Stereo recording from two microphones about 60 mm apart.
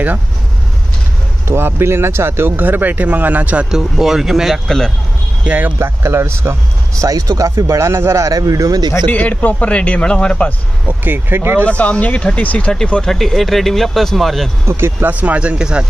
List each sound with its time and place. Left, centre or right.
1.5 s speech: right
2.5 s speech: right
3.7 s speech: centre
4.6 s speech: centre
5.5 s speech: centre
5.8 s speech: right
7.0 s speech: right
8.3 s speech: right
9.1 s a man's voice: left
10.9 s speech: right
11.6 s a man's voice: left; by 14.5 s centre
14.7 s speech: right
15.0 s speech: right